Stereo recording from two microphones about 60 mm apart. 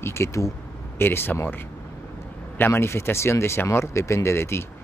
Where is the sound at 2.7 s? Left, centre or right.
Left.